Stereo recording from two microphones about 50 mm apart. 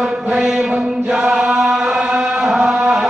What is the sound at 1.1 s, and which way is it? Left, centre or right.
Chant, centre.